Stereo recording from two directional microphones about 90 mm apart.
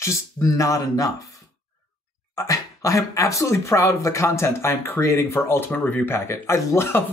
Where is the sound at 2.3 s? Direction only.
40° left (ahead or behind).